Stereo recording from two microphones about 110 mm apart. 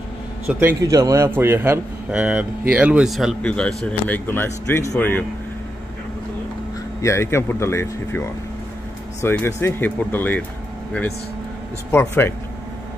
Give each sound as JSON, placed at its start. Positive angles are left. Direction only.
{"t": 0.5, "sound": "a man's voice", "side_deg": -20}
{"t": 0.7, "sound": "a man's voice", "side_deg": -35}
{"t": 2.0, "sound": "speech", "side_deg": -10}
{"t": 3.4, "sound": "speech", "side_deg": 10}
{"t": 7.0, "sound": "speech", "side_deg": 25}
{"t": 9.5, "sound": "speech", "side_deg": 25}
{"t": 11.9, "sound": "speech", "side_deg": 20}